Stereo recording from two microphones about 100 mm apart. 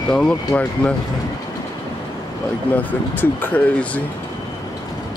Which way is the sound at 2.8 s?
15° left (ahead or behind).